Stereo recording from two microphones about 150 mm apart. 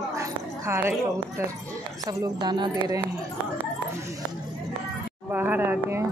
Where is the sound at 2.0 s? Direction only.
25° right (ahead or behind).